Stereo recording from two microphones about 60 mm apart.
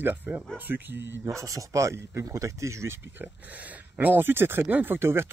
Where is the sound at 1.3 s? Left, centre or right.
Right.